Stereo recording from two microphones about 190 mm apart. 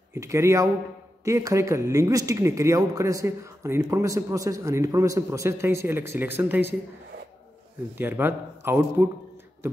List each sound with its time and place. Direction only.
0.1 s speech: 15° right (ahead or behind)
8.0 s speech: 10° right (ahead or behind)